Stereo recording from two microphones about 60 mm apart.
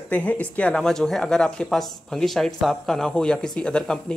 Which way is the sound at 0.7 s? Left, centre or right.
Centre.